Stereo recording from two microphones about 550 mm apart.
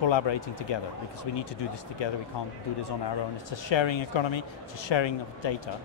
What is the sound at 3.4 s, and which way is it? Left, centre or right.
Speech, left.